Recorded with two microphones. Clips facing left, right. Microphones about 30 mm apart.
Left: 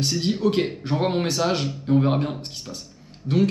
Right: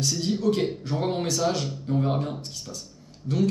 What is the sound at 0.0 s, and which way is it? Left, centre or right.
Speech, left.